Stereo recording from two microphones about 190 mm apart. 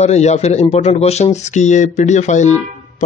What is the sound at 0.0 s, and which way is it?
Speech, 35° left (ahead or behind).